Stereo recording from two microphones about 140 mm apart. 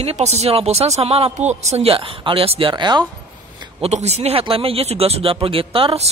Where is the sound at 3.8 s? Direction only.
50° right (ahead or behind).